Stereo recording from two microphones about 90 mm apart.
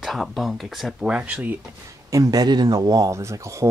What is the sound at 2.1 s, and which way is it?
Speech, 45° right (ahead or behind).